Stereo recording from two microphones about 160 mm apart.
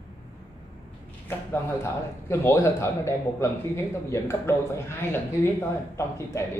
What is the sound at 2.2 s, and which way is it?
A man's voice, 15° left (ahead or behind).